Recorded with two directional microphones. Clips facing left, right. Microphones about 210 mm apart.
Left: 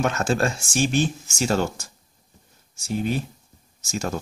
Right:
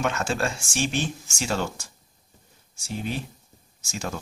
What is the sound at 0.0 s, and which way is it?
Speech, 40° left (ahead or behind).